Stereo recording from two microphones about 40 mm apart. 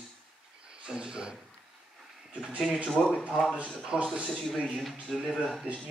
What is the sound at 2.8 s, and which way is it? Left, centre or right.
Speech, centre.